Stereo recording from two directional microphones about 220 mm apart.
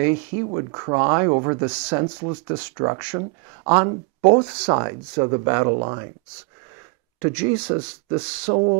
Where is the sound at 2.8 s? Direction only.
20° right (ahead or behind).